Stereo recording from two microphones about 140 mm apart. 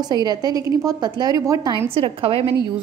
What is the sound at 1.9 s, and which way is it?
Speech, 40° right (ahead or behind).